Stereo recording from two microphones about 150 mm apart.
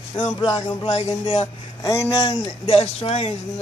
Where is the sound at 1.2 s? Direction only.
40° left (ahead or behind).